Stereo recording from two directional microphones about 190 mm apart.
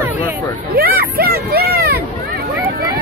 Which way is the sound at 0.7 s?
50° right (ahead or behind).